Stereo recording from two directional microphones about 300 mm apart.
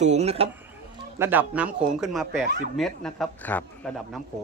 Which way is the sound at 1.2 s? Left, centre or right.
Centre.